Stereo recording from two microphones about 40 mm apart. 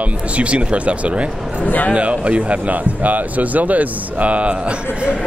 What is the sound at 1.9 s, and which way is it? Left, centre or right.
Speech, right.